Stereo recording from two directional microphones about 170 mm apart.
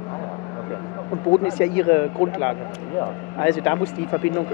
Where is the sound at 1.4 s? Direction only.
15° left (ahead or behind).